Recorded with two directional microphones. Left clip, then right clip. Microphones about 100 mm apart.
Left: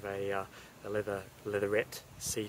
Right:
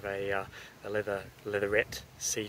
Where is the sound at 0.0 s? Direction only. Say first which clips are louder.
Right 3 dB; 15° left (ahead or behind).